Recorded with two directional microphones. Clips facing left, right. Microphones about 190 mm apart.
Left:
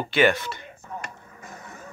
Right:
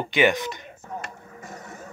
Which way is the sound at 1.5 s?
40° right (ahead or behind).